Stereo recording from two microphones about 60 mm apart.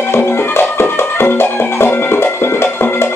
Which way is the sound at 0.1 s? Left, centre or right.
Left.